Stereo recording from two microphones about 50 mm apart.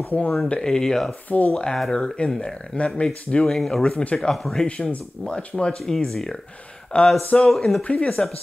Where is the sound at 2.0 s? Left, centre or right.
Centre.